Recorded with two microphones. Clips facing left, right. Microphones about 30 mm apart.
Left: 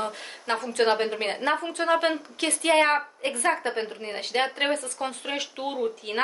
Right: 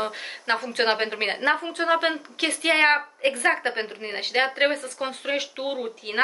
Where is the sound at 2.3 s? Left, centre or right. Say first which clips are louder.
Even; right.